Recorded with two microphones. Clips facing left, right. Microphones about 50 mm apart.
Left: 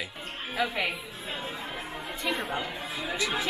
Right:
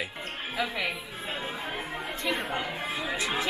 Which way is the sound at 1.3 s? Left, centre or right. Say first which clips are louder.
Right 1 dB; centre.